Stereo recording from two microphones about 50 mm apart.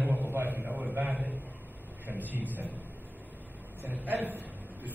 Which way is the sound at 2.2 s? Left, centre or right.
Right.